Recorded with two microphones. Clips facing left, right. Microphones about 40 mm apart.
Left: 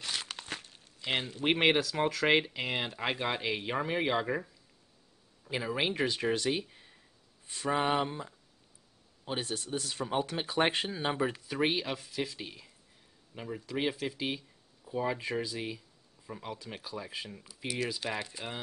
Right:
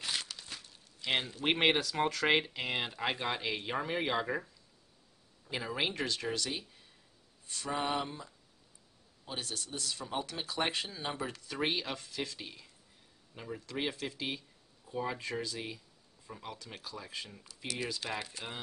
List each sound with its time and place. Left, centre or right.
0.3 s a sound: left
1.0 s speech: left
1.4 s speech: centre; by 11.5 s left
11.5 s speech: centre